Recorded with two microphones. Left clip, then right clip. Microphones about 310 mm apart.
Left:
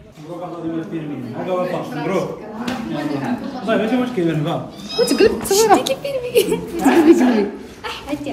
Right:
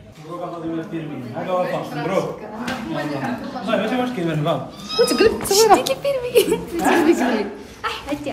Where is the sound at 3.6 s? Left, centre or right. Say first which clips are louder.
Left 2 dB; centre.